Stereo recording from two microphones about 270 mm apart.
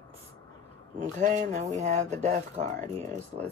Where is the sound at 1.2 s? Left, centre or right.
Right.